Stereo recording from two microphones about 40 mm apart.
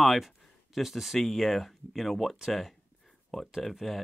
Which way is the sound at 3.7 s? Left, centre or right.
Centre.